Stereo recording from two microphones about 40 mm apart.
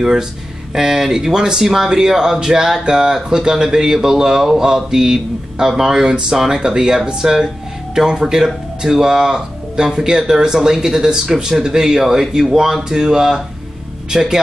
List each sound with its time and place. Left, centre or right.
0.0 s speech: centre